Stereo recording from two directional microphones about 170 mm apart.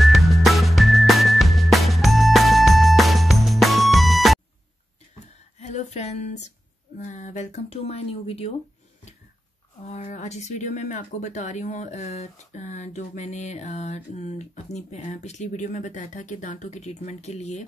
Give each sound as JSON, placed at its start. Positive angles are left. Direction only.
{"t": 0.0, "sound": "music", "side_deg": 0}
{"t": 5.6, "sound": "a sound", "side_deg": 40}
{"t": 7.0, "sound": "speech", "side_deg": 45}
{"t": 9.8, "sound": "speech", "side_deg": 45}